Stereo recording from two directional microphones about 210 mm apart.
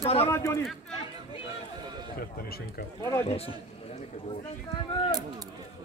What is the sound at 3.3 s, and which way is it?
Speech, 30° left (ahead or behind).